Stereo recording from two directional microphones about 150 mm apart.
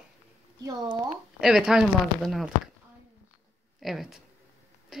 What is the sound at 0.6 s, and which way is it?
Speech, 30° right (ahead or behind).